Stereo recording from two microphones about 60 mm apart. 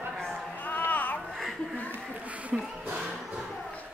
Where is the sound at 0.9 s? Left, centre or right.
Left.